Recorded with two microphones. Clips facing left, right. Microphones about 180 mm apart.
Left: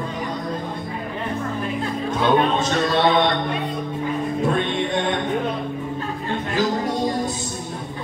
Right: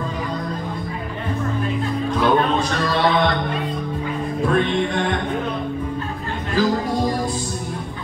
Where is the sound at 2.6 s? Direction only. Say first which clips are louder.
Left 1 dB; 20° left (ahead or behind).